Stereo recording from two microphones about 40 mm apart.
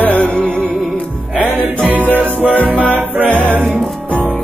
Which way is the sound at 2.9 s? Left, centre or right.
Right.